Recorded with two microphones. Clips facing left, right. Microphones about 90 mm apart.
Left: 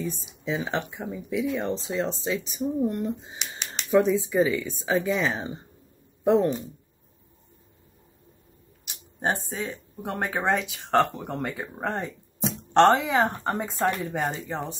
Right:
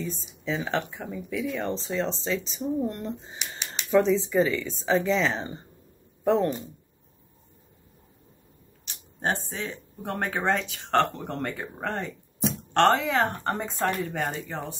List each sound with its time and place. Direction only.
0.0 s speech: 15° left (ahead or behind)
3.3 s a sound: centre (ahead or behind)
3.9 s speech: 10° left (ahead or behind)
8.8 s speech: 10° left (ahead or behind)